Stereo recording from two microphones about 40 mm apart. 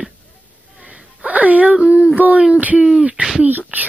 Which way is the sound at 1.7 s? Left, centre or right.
Right.